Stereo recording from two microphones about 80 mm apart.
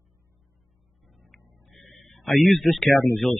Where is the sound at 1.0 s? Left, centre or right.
Centre.